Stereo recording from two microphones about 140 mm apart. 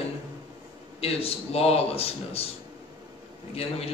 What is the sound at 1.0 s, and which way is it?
A man's voice, 45° left (ahead or behind).